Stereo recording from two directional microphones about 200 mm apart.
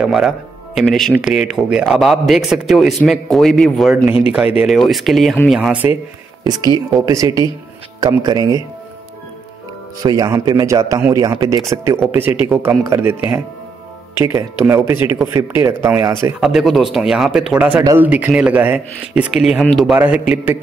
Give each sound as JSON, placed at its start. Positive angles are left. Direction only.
{"t": 0.0, "sound": "a man's voice", "side_deg": 0}
{"t": 6.4, "sound": "speech", "side_deg": -20}
{"t": 10.0, "sound": "speech", "side_deg": -20}
{"t": 14.1, "sound": "speech", "side_deg": -10}
{"t": 16.3, "sound": "a man's voice", "side_deg": 0}